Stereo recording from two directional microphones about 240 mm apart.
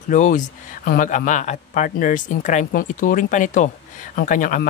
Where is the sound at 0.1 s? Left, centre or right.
Left.